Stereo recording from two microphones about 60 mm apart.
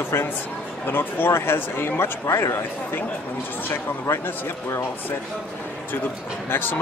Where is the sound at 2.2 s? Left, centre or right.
Left.